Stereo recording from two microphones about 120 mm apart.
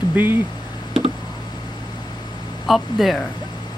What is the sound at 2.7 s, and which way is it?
Speech, centre (ahead or behind).